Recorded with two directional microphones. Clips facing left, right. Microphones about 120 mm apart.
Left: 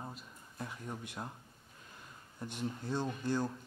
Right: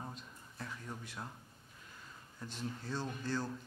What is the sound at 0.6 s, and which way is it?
Speech, 20° left (ahead or behind).